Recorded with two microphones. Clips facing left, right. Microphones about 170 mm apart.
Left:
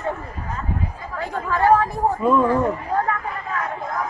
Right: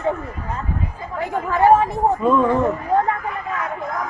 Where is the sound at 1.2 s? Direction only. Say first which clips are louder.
Right 3 dB; 20° right (ahead or behind).